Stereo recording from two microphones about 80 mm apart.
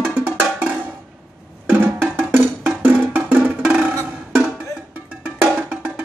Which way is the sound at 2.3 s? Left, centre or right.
Right.